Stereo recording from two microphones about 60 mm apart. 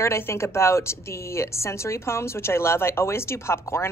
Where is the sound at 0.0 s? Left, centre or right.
Left.